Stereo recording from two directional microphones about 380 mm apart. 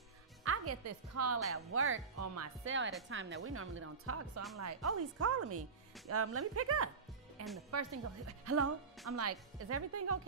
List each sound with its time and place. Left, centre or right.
0.4 s a woman's voice: right